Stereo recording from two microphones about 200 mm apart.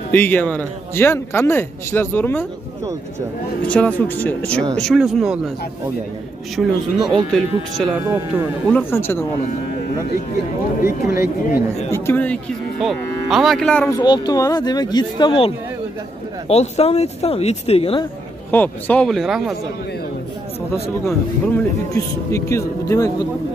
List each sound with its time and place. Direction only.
0.1 s a man's voice: 10° left (ahead or behind)
3.6 s a man's voice: 5° left (ahead or behind)
6.5 s a man's voice: centre (ahead or behind)
10.8 s speech: 15° right (ahead or behind)
11.4 s speech: 45° left (ahead or behind)
11.9 s a man's voice: 10° left (ahead or behind)
13.9 s speech: 20° left (ahead or behind)
18.5 s speech: 10° left (ahead or behind)
21.9 s a man's voice: 15° left (ahead or behind)